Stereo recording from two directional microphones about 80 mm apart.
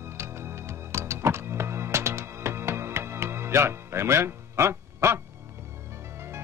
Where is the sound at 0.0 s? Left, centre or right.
Right.